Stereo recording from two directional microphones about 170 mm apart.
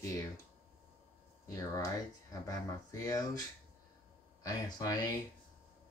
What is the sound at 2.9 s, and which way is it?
Speech, 20° left (ahead or behind).